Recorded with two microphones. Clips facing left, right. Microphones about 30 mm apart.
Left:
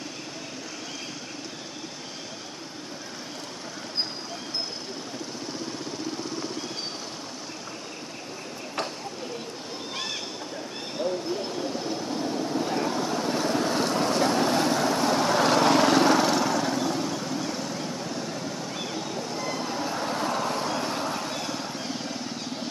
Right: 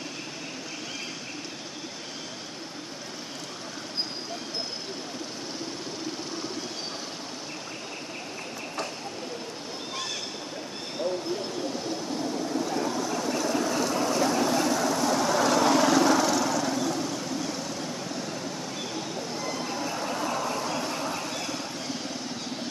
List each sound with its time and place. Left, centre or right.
12.6 s vehicle: left
17.2 s vehicle: centre
20.2 s vehicle: left
20.6 s vehicle: left